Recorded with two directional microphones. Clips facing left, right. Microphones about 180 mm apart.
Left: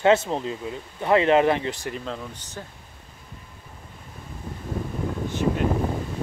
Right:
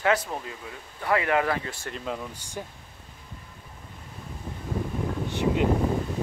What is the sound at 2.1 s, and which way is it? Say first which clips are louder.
Speech: even; 10° right (ahead or behind).